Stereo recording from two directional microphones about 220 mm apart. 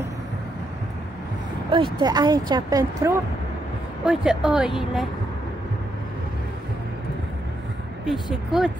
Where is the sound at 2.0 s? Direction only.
20° right (ahead or behind).